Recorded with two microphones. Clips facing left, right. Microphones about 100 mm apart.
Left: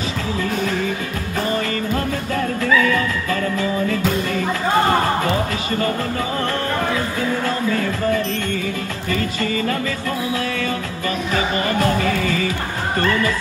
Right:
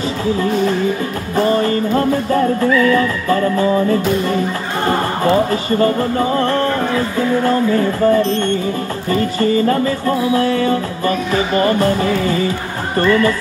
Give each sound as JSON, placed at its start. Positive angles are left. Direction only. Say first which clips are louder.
{"t": 1.3, "sound": "music", "louder": "right 8 dB", "side_deg": -35}
{"t": 5.5, "sound": "music", "louder": "right 7 dB", "side_deg": -35}